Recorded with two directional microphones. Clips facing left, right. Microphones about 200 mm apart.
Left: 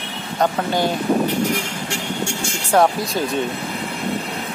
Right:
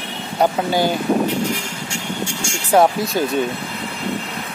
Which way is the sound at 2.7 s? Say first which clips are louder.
Right 2 dB; centre (ahead or behind).